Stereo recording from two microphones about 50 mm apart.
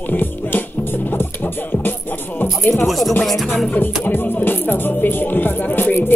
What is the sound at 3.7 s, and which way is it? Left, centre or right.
Music, left.